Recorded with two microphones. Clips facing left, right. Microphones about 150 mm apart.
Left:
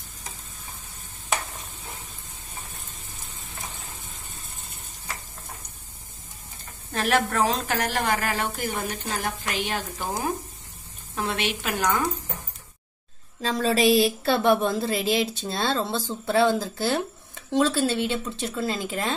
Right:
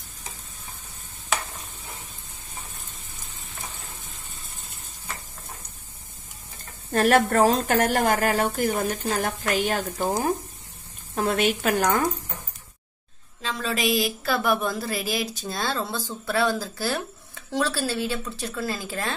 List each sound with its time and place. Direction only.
6.9 s a woman's voice: 45° right (ahead or behind)
11.1 s a woman's voice: 45° right (ahead or behind)
13.4 s a woman's voice: 35° left (ahead or behind); by 19.1 s 20° left (ahead or behind)